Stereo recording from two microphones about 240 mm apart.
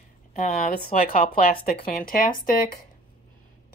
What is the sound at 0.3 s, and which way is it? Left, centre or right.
Speech, left.